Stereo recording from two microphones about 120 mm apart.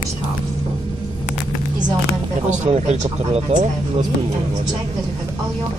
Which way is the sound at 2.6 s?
70° right (ahead or behind).